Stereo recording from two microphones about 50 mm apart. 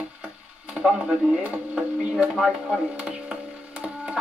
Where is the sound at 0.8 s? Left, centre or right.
Centre.